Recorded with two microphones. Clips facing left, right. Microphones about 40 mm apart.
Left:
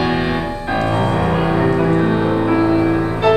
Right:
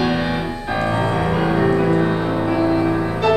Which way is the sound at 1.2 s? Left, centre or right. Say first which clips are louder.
Left 1 dB; centre.